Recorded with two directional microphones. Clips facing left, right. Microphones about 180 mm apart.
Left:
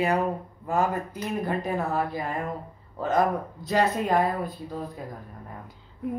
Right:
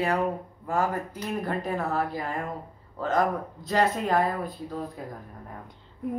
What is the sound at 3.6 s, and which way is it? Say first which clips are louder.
Speech: left 1 dB; 10° left (ahead or behind).